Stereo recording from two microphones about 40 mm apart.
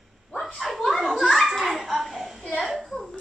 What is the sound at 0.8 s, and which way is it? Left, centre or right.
Children playing, centre.